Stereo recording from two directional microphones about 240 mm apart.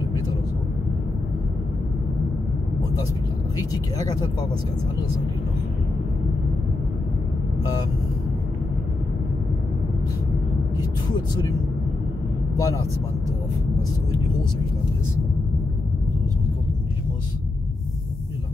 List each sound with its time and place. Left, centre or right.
3.5 s speech: centre
11.1 s speech: centre
12.5 s speech: centre